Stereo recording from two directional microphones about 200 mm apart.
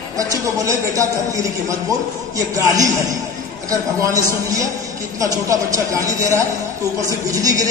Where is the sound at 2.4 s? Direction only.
15° right (ahead or behind).